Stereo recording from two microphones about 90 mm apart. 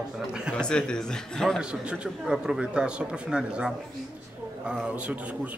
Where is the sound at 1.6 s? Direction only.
10° right (ahead or behind).